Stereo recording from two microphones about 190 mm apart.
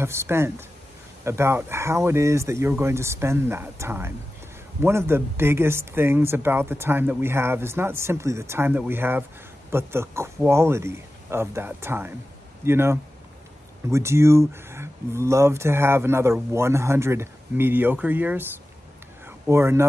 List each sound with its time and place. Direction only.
0.0 s speech: 15° right (ahead or behind)